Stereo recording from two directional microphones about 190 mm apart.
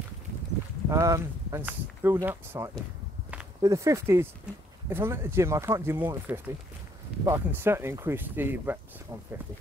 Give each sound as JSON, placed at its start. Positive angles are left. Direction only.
{"t": 0.8, "sound": "speech", "side_deg": -15}